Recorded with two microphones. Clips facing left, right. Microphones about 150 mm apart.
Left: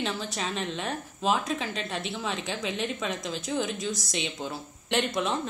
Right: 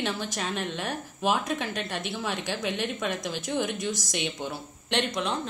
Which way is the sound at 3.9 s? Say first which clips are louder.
Even; 90° right.